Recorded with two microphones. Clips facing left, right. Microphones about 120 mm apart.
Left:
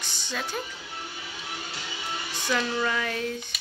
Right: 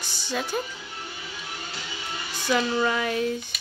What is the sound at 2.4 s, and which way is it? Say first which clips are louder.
Speech: right 4 dB; 10° right (ahead or behind).